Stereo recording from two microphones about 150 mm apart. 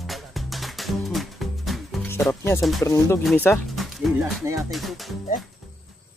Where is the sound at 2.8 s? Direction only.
20° left (ahead or behind).